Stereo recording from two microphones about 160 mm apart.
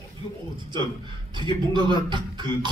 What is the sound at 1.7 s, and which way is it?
Speech, 30° right (ahead or behind).